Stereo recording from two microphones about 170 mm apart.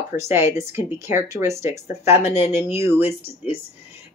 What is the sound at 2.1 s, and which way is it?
Speech, 35° left (ahead or behind).